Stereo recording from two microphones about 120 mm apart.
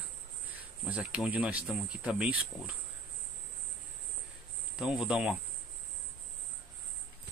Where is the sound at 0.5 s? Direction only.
10° right (ahead or behind).